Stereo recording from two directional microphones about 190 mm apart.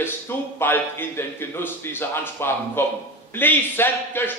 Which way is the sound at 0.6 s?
10° left (ahead or behind).